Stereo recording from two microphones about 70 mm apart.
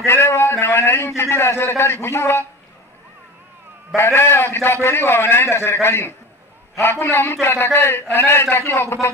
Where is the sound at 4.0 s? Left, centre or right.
Left.